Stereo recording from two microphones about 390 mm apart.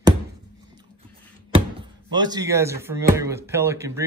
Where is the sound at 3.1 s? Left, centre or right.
Centre.